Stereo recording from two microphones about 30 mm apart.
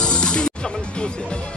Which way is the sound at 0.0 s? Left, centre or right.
Left.